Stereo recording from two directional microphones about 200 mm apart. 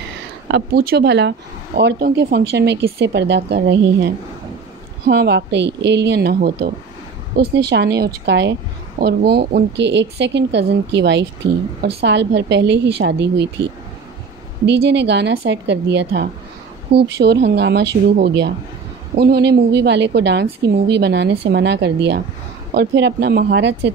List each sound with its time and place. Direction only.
0.5 s speech: 55° right (ahead or behind)
14.7 s speech: 55° right (ahead or behind)